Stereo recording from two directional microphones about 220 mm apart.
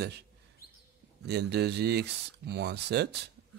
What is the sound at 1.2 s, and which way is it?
A man's voice, 50° right (ahead or behind).